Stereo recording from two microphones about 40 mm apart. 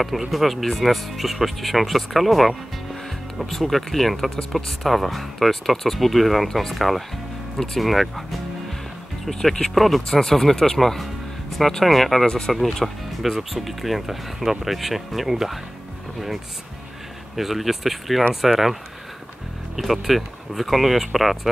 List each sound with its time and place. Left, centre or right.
0.3 s speech: centre
9.3 s speech: centre
12.3 s speech: centre
12.8 s speech: centre
17.4 s speech: centre